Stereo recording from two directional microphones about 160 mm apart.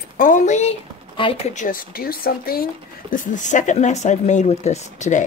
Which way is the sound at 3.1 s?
55° left (ahead or behind).